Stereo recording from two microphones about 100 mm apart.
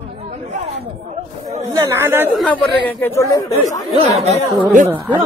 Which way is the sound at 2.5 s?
15° left (ahead or behind).